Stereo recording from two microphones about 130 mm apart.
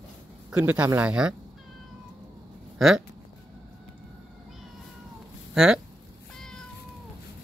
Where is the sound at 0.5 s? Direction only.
10° right (ahead or behind).